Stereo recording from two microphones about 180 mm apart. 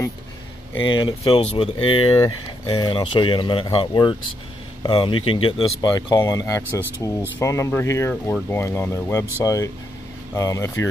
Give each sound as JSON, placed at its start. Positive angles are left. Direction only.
{"t": 1.0, "sound": "speech", "side_deg": 30}